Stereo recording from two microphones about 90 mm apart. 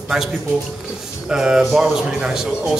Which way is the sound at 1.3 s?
5° right (ahead or behind).